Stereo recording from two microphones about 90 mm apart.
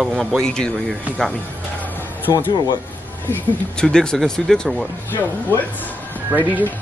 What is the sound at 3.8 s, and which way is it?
Speech, 10° left (ahead or behind).